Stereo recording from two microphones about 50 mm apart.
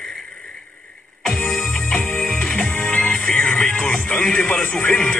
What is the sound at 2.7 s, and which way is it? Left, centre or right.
Music, left.